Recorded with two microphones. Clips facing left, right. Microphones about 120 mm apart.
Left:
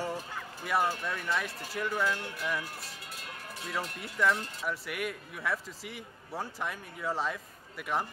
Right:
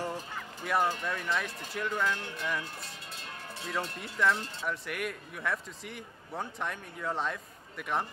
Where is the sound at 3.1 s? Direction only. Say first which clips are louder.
Even; 30° right (ahead or behind).